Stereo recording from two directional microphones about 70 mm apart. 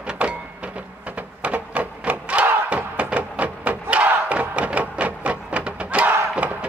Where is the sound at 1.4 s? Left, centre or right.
Centre.